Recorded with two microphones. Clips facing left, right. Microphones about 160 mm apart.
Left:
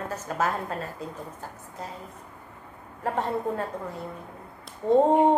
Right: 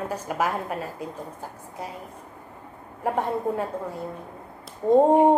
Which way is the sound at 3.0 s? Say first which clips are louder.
Right 2 dB; 10° right (ahead or behind).